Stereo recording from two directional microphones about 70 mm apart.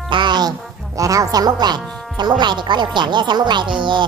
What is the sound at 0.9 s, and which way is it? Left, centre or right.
Speech, right.